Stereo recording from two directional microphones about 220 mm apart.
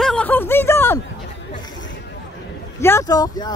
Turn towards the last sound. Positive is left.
turn(degrees=15)  # may be behind; listen again after turning